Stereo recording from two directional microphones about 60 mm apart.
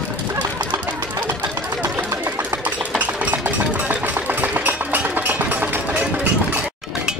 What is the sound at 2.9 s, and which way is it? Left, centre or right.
Engine, right.